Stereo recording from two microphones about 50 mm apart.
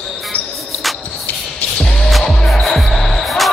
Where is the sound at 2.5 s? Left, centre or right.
Centre.